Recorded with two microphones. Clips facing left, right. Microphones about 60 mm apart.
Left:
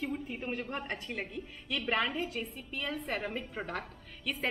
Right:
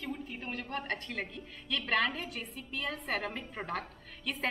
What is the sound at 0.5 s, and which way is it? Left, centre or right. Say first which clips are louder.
A woman's voice: right 1 dB; left.